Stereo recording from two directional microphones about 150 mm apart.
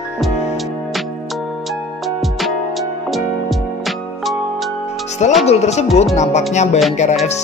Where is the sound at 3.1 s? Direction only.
Centre (ahead or behind).